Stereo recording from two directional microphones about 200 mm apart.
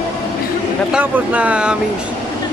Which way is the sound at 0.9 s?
10° right (ahead or behind).